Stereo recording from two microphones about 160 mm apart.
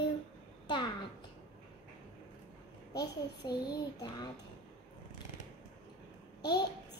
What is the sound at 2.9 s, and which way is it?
A child's voice, 25° left (ahead or behind).